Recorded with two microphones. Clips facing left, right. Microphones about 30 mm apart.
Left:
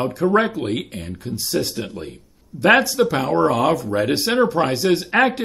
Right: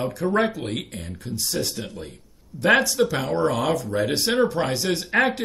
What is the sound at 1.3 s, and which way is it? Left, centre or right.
Speech, centre.